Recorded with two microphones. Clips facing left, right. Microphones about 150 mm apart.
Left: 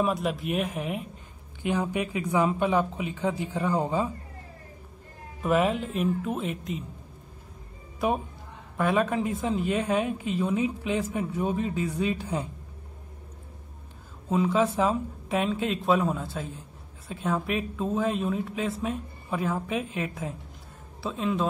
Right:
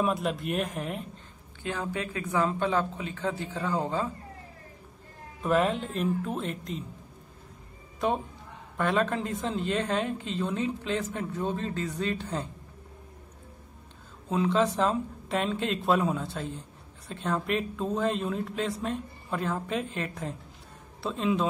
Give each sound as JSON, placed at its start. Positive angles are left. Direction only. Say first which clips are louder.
{"t": 0.0, "sound": "speech", "louder": "left 1 dB", "side_deg": 0}
{"t": 1.6, "sound": "a woman's voice", "louder": "left 5 dB", "side_deg": 15}
{"t": 5.4, "sound": "speech", "louder": "left 1 dB", "side_deg": 5}
{"t": 8.0, "sound": "a woman's voice", "louder": "left 1 dB", "side_deg": 10}
{"t": 14.3, "sound": "speech", "louder": "left 1 dB", "side_deg": 5}